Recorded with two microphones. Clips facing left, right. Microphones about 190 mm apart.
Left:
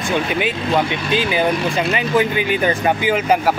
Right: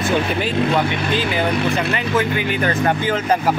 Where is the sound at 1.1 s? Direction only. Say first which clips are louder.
Left 4 dB; 15° left (ahead or behind).